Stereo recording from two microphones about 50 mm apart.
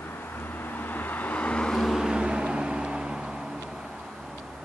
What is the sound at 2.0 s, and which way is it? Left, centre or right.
Vehicle, centre.